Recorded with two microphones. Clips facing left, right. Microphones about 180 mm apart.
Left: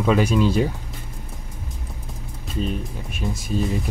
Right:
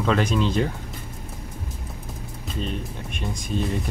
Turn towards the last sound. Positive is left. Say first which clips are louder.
# left 2 dB
turn(degrees=5)  # may be behind; listen again after turning